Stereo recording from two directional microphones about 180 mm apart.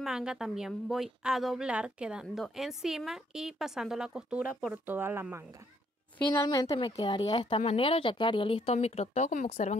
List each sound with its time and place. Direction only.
0.0 s a woman's voice: 5° right (ahead or behind)
6.3 s speech: 20° left (ahead or behind); by 9.8 s 45° left (ahead or behind)